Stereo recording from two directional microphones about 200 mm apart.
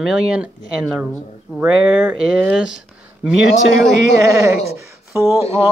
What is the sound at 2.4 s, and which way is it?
Speech, 5° right (ahead or behind).